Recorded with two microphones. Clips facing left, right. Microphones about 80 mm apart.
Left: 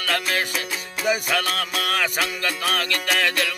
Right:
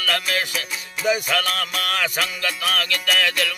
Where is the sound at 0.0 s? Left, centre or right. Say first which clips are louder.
Even; left.